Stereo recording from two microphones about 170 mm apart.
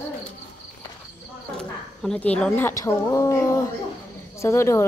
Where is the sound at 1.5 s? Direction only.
5° left (ahead or behind).